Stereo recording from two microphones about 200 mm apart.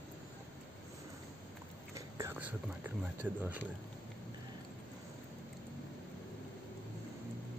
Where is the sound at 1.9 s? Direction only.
15° right (ahead or behind).